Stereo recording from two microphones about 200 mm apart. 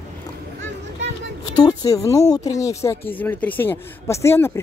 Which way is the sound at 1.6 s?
20° left (ahead or behind).